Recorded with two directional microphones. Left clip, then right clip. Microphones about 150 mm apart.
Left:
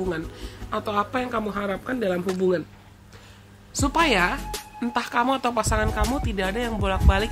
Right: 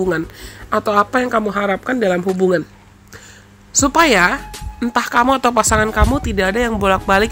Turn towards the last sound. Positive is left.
turn(degrees=-50)  # may be behind; listen again after turning